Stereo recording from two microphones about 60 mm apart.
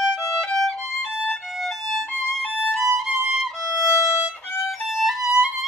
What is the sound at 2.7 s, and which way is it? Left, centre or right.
Violin, centre.